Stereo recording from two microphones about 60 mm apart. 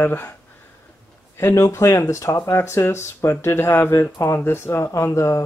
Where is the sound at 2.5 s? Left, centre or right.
Left.